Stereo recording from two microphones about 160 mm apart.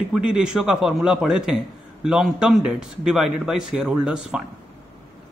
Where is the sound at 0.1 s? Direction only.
5° right (ahead or behind).